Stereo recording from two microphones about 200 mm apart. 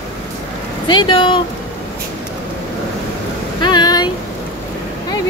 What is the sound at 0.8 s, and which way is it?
Speech, 25° left (ahead or behind).